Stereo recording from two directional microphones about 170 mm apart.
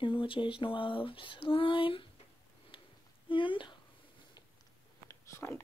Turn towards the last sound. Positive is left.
turn(degrees=15)  # may be behind; listen again after turning